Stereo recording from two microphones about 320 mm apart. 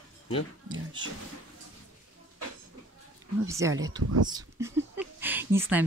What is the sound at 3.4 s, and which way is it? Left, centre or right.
Speech, centre.